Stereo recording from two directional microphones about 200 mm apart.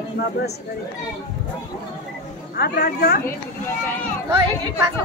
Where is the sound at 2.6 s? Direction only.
50° left (ahead or behind).